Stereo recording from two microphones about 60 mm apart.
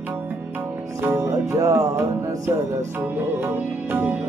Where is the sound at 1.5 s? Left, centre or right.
Right.